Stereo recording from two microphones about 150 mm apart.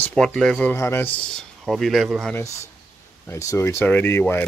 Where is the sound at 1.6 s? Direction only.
Centre (ahead or behind).